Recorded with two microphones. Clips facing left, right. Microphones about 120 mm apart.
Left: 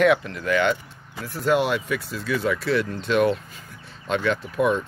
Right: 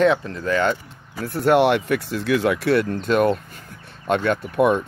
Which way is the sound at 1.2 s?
60° right (ahead or behind).